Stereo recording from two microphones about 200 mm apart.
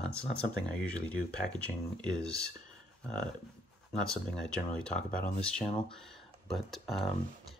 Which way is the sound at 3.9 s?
5° left (ahead or behind).